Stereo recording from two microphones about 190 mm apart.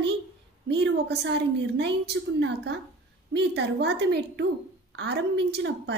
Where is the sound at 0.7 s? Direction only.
65° right (ahead or behind).